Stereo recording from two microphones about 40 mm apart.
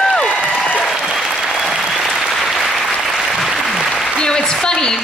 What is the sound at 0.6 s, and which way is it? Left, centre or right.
Applause, left.